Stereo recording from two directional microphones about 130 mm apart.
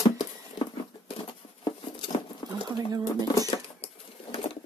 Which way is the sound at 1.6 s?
40° left (ahead or behind).